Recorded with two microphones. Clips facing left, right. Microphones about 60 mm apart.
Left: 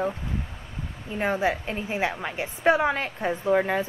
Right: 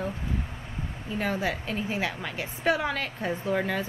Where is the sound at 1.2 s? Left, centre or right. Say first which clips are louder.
Left 5 dB; left.